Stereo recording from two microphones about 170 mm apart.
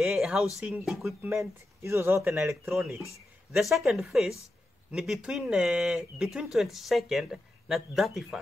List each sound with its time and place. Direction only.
0.0 s a sound: 5° right (ahead or behind)
0.6 s speech: 5° right (ahead or behind)
1.3 s speech: 15° right (ahead or behind)
3.5 s speech: centre (ahead or behind)